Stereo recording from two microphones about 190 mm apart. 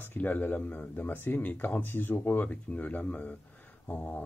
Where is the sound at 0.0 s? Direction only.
10° left (ahead or behind).